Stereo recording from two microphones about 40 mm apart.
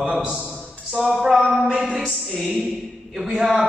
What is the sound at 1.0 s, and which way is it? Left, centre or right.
Speech, centre.